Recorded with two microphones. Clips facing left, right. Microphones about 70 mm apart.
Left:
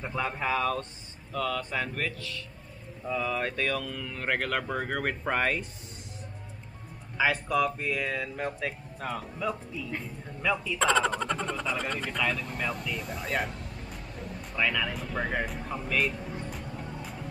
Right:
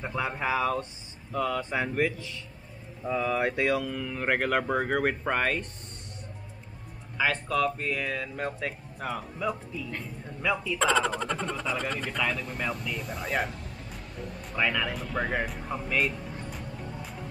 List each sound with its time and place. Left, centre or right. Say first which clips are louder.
0.0 s speech: right 1 dB; centre
7.2 s speech: left 1 dB; centre
14.5 s speech: right 1 dB; centre